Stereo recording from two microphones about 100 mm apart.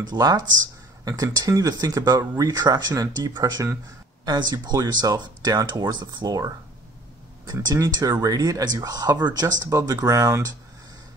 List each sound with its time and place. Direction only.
0.0 s speech: 40° right (ahead or behind)
7.7 s speech: 35° right (ahead or behind)